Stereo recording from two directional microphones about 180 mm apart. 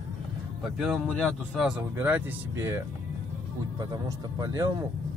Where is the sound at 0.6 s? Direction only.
Centre (ahead or behind).